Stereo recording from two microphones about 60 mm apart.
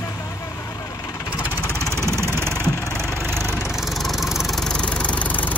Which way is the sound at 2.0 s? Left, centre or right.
Right.